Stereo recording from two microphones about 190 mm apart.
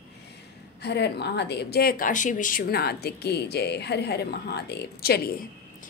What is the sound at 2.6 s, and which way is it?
A woman's voice, 55° left (ahead or behind).